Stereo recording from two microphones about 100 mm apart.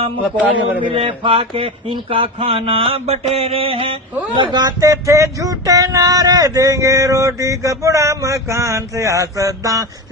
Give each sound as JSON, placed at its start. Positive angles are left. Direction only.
{"t": 0.7, "sound": "mantra", "side_deg": -60}
{"t": 4.4, "sound": "speech", "side_deg": -45}
{"t": 4.7, "sound": "speech", "side_deg": -30}